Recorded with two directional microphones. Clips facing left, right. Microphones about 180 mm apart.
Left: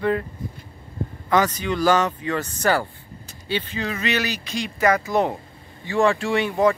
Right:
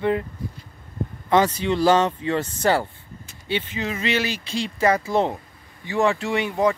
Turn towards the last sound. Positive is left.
turn(degrees=-20)  # may be behind; listen again after turning